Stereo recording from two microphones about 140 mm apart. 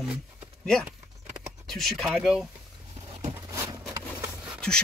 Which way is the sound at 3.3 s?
20° right (ahead or behind).